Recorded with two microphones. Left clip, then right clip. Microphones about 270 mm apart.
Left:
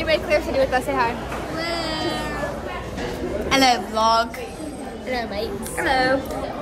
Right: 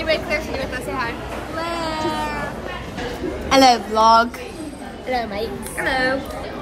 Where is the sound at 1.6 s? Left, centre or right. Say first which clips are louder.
Right 2 dB; centre.